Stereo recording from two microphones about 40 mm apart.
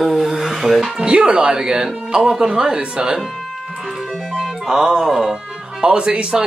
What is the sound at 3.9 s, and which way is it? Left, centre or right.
Music, centre.